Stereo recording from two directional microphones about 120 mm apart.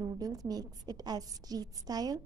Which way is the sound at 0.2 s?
30° right (ahead or behind).